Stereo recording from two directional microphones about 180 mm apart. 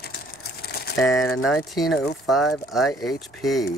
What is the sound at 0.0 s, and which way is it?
Crumpling, 60° left (ahead or behind).